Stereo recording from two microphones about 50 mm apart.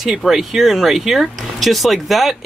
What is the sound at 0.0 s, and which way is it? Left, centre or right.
Speech, centre.